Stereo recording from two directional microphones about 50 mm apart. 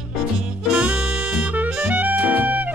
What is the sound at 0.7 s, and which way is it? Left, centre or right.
Music, right.